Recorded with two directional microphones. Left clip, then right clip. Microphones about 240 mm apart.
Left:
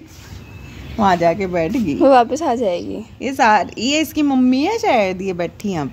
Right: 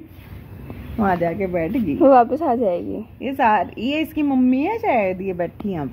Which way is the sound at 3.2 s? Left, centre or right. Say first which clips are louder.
Left 4 dB; left.